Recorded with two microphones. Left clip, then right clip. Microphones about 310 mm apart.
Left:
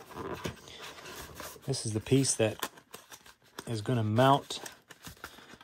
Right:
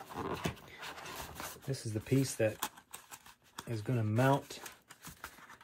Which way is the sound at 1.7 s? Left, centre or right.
Left.